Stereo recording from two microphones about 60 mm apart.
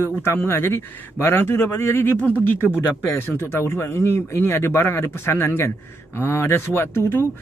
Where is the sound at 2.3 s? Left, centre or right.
Left.